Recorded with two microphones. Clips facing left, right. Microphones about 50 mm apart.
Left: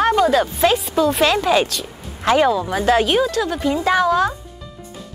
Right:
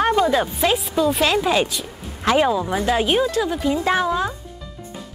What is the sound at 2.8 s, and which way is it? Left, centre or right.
Speech, left.